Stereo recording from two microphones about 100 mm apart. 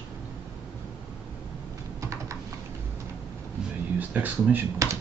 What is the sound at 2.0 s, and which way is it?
Typing, 30° right (ahead or behind).